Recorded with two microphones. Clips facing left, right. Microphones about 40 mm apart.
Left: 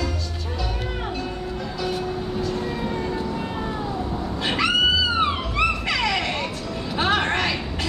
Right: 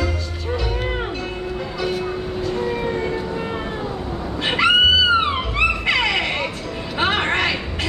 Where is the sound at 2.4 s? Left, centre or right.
Right.